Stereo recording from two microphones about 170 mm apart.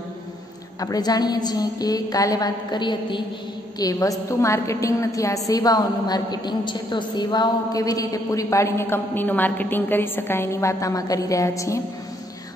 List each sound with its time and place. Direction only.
0.7 s a woman's voice: 20° left (ahead or behind)